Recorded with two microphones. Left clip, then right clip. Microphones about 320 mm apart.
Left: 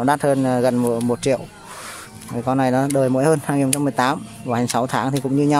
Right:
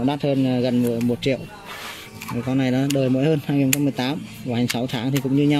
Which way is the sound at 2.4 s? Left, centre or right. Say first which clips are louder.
Left 5 dB; left.